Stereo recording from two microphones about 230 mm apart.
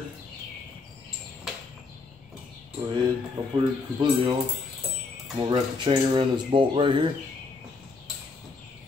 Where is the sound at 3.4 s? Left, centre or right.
Centre.